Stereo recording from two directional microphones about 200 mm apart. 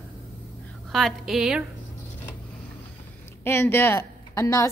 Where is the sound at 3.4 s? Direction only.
10° left (ahead or behind).